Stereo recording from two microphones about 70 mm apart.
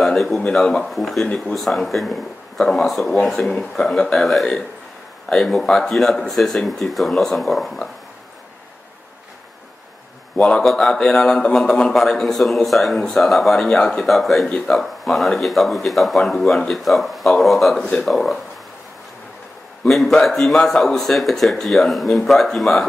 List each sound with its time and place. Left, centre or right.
0.0 s a sound: centre
0.6 s a man's voice: centre
10.3 s a man's voice: centre
10.6 s a man's voice: centre
19.8 s a man's voice: centre